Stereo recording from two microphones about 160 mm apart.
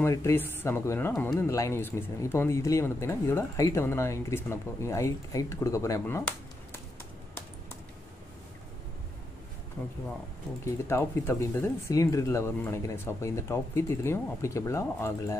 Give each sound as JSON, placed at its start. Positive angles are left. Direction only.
{"t": 0.0, "sound": "speech", "side_deg": 20}
{"t": 10.6, "sound": "speech", "side_deg": 15}